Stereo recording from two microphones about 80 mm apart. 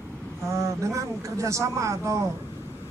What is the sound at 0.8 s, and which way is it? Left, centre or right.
A man's voice, right.